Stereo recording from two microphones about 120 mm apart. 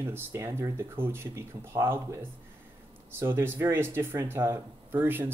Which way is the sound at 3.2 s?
20° right (ahead or behind).